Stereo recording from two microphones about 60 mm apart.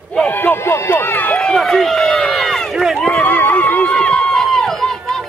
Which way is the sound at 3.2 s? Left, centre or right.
Left.